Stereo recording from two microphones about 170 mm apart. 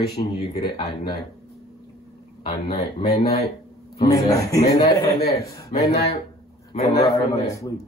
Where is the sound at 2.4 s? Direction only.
30° left (ahead or behind).